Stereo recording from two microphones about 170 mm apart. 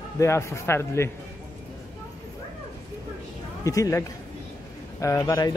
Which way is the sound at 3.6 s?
20° left (ahead or behind).